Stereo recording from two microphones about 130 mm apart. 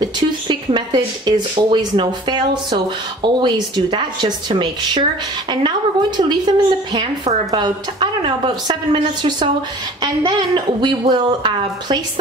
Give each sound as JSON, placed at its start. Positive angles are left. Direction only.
{"t": 0.0, "sound": "speech", "side_deg": -35}